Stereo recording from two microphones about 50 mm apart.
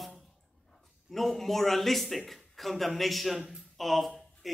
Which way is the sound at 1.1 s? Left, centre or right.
Centre.